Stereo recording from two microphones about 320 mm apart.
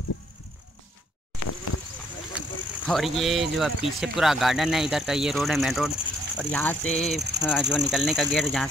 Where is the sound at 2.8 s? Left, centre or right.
Centre.